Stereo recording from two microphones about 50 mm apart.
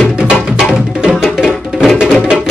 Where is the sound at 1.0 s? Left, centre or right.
Centre.